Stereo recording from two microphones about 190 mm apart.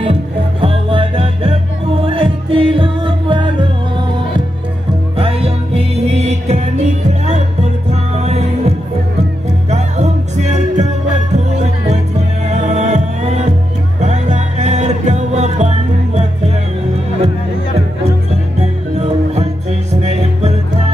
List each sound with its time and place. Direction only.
0.0 s music: 30° right (ahead or behind)
5.1 s music: 30° right (ahead or behind)
18.9 s music: 35° right (ahead or behind)